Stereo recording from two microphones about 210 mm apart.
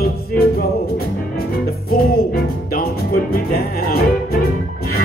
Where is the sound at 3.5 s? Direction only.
45° left (ahead or behind).